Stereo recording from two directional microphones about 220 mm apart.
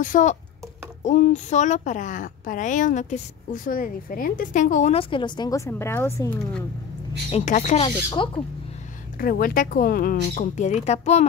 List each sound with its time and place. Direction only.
0.0 s a woman's voice: 35° left (ahead or behind); by 6.6 s 10° left (ahead or behind)
7.2 s speech: 30° left (ahead or behind)
9.2 s a woman's voice: 40° left (ahead or behind)